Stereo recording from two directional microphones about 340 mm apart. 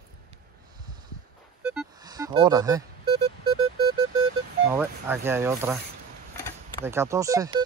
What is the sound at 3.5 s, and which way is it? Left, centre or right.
Music, right.